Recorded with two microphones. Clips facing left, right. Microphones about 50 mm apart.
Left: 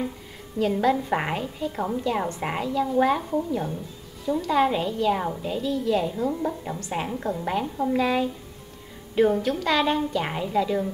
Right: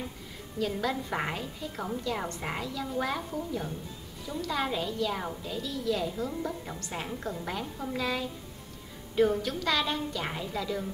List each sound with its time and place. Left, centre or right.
0.6 s a woman's voice: left